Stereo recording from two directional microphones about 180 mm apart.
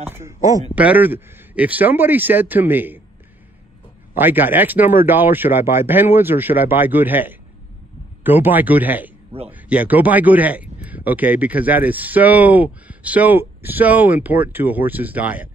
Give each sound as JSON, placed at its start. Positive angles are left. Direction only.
{"t": 0.1, "sound": "speech", "side_deg": -15}
{"t": 0.7, "sound": "speech", "side_deg": -10}
{"t": 4.1, "sound": "speech", "side_deg": -10}